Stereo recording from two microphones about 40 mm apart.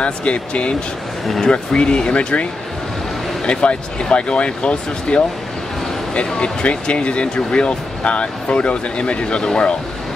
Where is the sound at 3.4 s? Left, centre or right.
Left.